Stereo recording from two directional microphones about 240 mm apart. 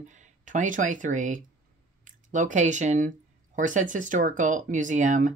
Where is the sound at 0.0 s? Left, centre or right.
Right.